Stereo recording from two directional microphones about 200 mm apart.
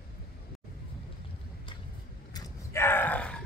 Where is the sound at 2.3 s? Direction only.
15° left (ahead or behind).